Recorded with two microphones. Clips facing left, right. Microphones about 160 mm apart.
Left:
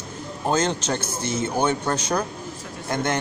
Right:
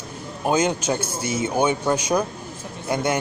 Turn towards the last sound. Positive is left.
turn(degrees=-10)  # may be behind; listen again after turning